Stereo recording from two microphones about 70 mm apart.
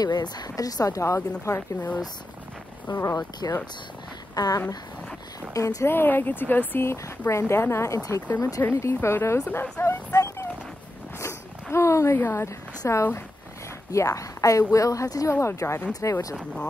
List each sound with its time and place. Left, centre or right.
0.0 s speech: left
3.2 s speech: left
4.4 s speech: left
5.5 s a woman's voice: left
5.9 s a woman's voice: left
8.7 s speech: left
13.9 s a woman's voice: left
15.3 s speech: left
15.9 s a woman's voice: left